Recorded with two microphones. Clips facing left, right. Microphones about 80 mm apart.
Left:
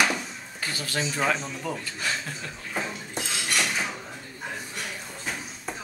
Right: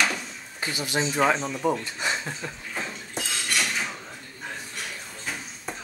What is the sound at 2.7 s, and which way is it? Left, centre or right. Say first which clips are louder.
Dishes: left 4 dB; centre.